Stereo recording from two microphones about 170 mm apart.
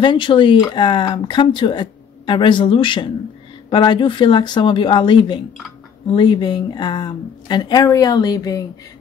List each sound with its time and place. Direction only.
0.0 s speech: 30° left (ahead or behind)